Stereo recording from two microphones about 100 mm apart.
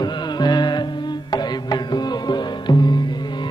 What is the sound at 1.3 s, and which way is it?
Music, 45° left (ahead or behind).